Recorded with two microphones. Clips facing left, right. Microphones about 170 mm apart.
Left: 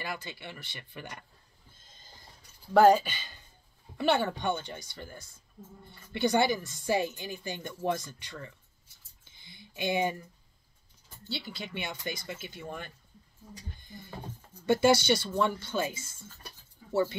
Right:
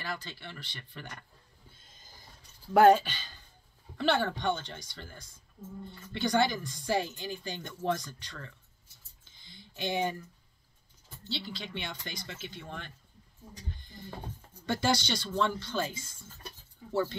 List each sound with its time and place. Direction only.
0.1 s speech: 10° left (ahead or behind)
2.7 s speech: centre (ahead or behind)
9.2 s a sound: 60° left (ahead or behind)
9.8 s speech: 10° left (ahead or behind)
11.2 s speech: 50° left (ahead or behind)
11.6 s speech: 5° left (ahead or behind)
13.7 s music: 50° left (ahead or behind)
14.7 s speech: 5° left (ahead or behind)